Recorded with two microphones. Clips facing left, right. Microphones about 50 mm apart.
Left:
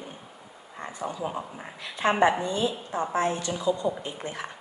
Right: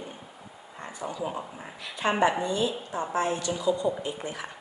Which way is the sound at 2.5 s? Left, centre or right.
Left.